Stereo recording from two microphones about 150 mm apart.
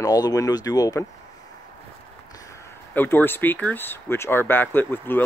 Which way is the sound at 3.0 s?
15° left (ahead or behind).